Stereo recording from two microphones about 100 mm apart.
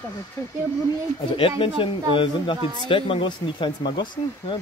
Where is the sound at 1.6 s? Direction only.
60° left (ahead or behind).